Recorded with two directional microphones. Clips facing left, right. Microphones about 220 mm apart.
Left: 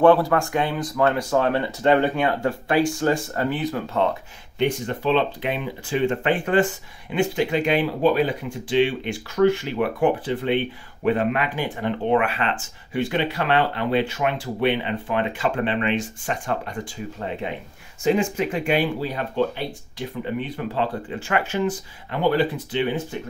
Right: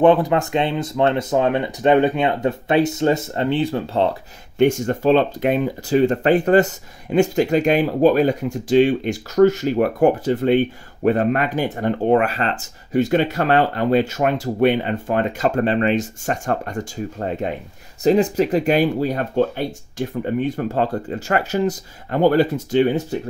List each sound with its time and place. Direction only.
0.0 s speech: 20° right (ahead or behind)
4.6 s speech: 45° right (ahead or behind)